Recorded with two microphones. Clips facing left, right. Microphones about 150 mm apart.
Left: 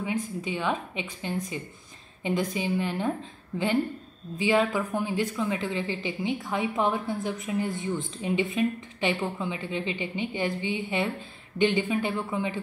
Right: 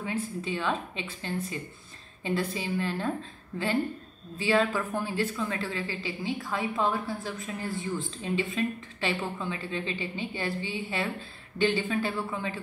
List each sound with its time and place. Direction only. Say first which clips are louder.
0.0 s a woman's voice: left 2 dB; 15° left (ahead or behind)